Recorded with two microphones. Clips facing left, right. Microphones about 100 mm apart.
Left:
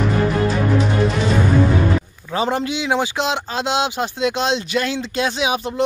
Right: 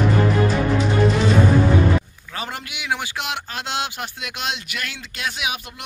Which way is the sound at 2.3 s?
25° left (ahead or behind).